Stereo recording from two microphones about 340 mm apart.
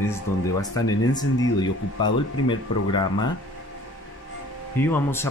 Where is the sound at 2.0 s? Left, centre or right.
Left.